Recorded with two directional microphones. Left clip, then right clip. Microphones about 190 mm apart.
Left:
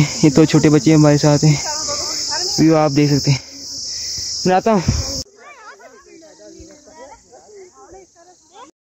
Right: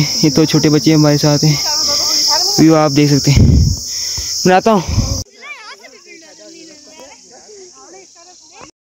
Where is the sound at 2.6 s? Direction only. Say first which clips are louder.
Right 2 dB; 10° right (ahead or behind).